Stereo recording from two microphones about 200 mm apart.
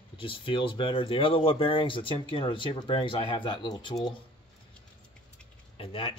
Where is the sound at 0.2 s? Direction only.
25° left (ahead or behind).